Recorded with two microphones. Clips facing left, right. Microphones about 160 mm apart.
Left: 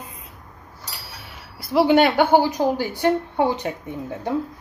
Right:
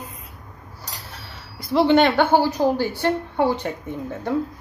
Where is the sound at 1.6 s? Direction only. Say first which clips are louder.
Even; 5° left (ahead or behind).